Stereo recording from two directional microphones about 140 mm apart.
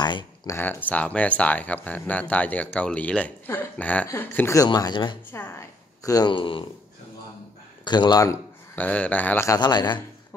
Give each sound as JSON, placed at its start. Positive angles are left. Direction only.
{"t": 0.0, "sound": "a sound", "side_deg": 30}
{"t": 0.8, "sound": "speech", "side_deg": 10}
{"t": 4.6, "sound": "speech", "side_deg": 30}
{"t": 5.3, "sound": "speech", "side_deg": 15}
{"t": 6.0, "sound": "speech", "side_deg": 30}
{"t": 7.8, "sound": "speech", "side_deg": 30}
{"t": 8.7, "sound": "speech", "side_deg": 10}
{"t": 9.5, "sound": "speech", "side_deg": 30}